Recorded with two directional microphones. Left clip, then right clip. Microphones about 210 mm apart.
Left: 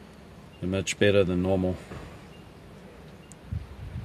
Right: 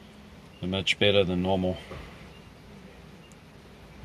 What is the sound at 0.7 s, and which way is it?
Speech, 45° left (ahead or behind).